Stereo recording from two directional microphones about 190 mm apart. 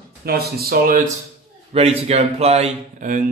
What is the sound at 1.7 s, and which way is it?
Speech, 35° right (ahead or behind).